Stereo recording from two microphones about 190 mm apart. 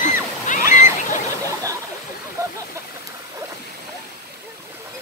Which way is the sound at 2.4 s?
20° right (ahead or behind).